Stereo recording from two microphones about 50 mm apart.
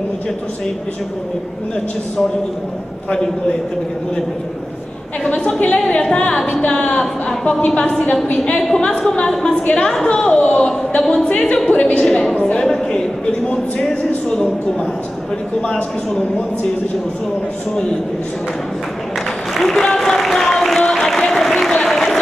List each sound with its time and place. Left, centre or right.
5.3 s a woman's voice: centre
7.0 s a woman's voice: centre
7.6 s speech: left
8.4 s a woman's voice: centre
9.6 s a woman's voice: left
10.3 s a woman's voice: left; by 13.0 s centre
13.2 s a woman's voice: left
19.5 s a sound: centre
21.1 s applause: centre